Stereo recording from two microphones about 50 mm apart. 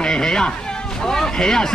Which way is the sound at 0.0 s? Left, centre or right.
Centre.